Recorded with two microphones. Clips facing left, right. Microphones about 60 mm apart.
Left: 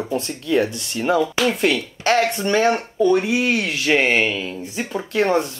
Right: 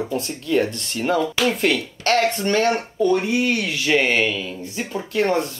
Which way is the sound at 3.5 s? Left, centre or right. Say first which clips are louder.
Left 1 dB; left.